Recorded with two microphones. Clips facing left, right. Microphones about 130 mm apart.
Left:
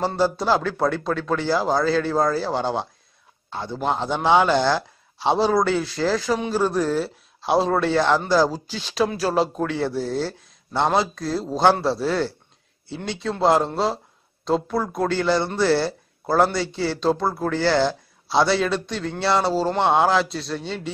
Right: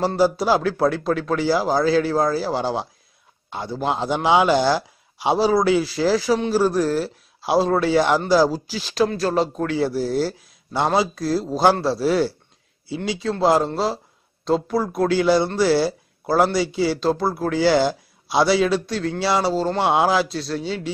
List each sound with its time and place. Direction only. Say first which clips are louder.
0.0 s speech: right 3 dB; 10° right (ahead or behind)
19.5 s speech: even; 5° left (ahead or behind)